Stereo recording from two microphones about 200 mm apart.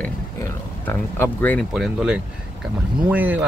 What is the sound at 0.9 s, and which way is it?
Speech, 10° left (ahead or behind).